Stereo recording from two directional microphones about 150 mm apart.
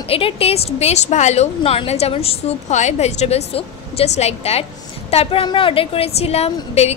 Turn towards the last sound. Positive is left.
turn(degrees=45)  # may be behind; listen again after turning